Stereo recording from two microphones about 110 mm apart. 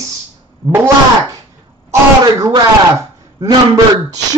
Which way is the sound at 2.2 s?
40° right (ahead or behind).